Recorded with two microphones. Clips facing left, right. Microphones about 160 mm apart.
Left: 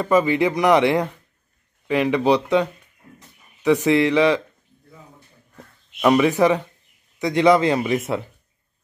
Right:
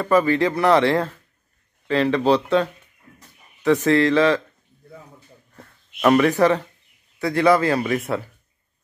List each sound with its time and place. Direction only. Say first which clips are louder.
0.0 s speech: even; 15° left (ahead or behind)
5.9 s speech: even; 10° left (ahead or behind)